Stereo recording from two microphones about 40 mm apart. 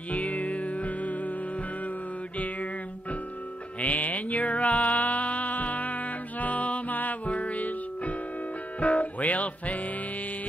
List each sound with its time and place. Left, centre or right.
0.1 s music: left
2.3 s music: left
3.8 s mantra: left
8.7 s music: left